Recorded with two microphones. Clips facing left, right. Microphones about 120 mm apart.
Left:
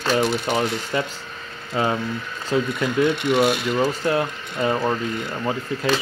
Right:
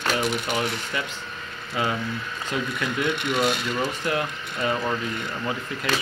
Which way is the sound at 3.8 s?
30° left (ahead or behind).